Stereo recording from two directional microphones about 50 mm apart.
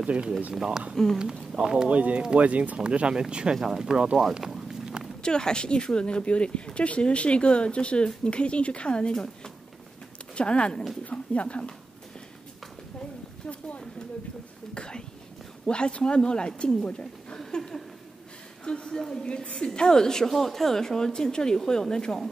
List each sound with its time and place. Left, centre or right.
0.0 s speech: right
1.1 s speech: centre
1.9 s speech: right
2.8 s speech: centre
4.4 s a sound: centre
5.2 s a woman's voice: centre
14.7 s a woman's voice: centre
17.5 s a sound: centre
18.6 s a woman's voice: centre